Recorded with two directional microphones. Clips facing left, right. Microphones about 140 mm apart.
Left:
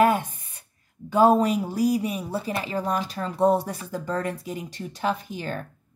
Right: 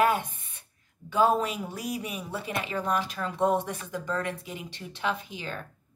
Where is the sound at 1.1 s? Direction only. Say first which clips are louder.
Left 6 dB; 40° left (ahead or behind).